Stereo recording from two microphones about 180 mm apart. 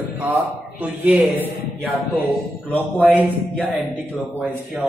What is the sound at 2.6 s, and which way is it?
Speech, 10° left (ahead or behind).